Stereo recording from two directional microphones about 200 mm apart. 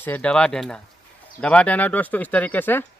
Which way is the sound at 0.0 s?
5° left (ahead or behind).